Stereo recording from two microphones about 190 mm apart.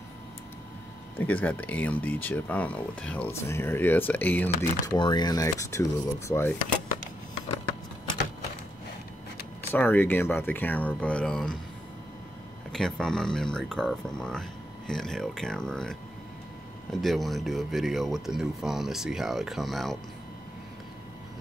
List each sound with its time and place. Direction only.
1.1 s speech: 10° left (ahead or behind)
4.8 s speech: 25° left (ahead or behind)
9.7 s speech: 10° left (ahead or behind)
12.7 s speech: 5° left (ahead or behind)